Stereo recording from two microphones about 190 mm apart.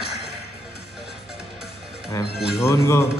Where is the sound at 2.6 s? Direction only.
15° left (ahead or behind).